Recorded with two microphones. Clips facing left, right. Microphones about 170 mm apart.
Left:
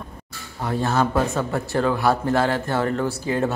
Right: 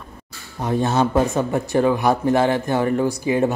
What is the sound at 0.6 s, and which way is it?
Speech, 20° right (ahead or behind).